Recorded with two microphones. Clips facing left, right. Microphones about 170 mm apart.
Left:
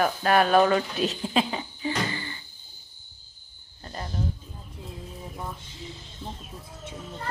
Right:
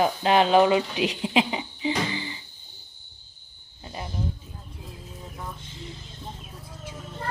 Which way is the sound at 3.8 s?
10° right (ahead or behind).